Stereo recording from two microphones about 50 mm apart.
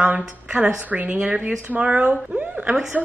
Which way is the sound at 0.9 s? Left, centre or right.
Right.